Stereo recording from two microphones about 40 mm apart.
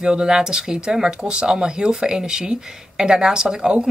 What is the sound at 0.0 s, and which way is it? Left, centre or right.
Speech, right.